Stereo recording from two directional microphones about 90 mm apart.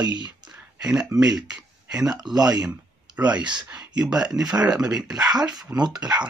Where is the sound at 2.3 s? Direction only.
45° right (ahead or behind).